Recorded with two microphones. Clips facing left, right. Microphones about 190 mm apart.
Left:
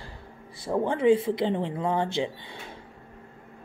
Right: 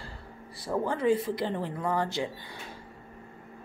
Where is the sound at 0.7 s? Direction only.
20° left (ahead or behind).